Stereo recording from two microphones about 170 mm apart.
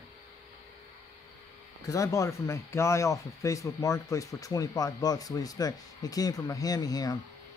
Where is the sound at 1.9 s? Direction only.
20° left (ahead or behind).